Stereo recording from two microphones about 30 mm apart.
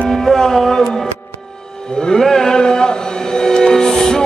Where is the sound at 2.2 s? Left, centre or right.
Centre.